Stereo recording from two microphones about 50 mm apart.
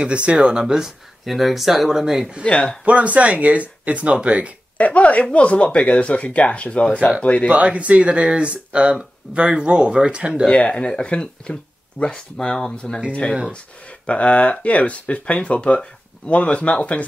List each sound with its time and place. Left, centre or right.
0.0 s speech: right
2.4 s speech: centre
2.8 s speech: right
4.7 s speech: left
7.5 s speech: right
10.6 s speech: left
14.0 s speech: left